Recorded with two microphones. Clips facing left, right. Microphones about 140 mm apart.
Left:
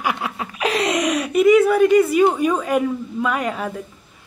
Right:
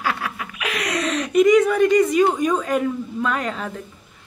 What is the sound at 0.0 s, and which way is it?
Laughter, 15° left (ahead or behind).